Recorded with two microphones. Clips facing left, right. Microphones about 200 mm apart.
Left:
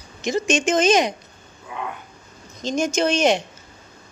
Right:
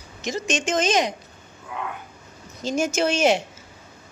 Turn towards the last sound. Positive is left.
turn(degrees=-5)  # may be behind; listen again after turning